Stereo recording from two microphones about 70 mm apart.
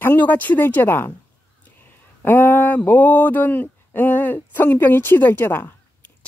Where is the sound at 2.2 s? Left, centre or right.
Left.